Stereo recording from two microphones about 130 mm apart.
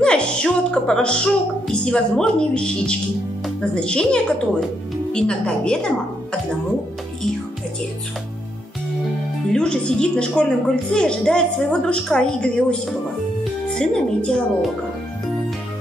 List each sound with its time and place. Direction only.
0.0 s music: 5° left (ahead or behind)
9.5 s music: 5° left (ahead or behind)
13.4 s speech: 5° left (ahead or behind)